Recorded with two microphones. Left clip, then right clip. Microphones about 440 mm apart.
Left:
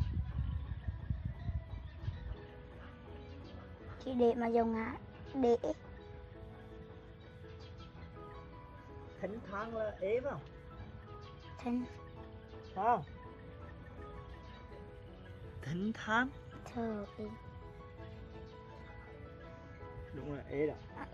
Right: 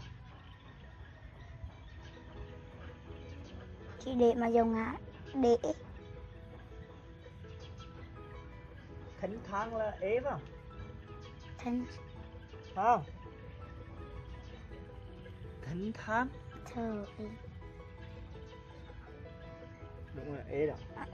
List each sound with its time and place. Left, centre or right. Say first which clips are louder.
4.0 s a woman's voice: right 3 dB; centre
9.2 s speech: right 4 dB; centre
11.6 s speech: right 1 dB; centre
15.6 s speech: left 1 dB; centre
16.6 s speech: right 1 dB; centre
20.2 s speech: right 2 dB; centre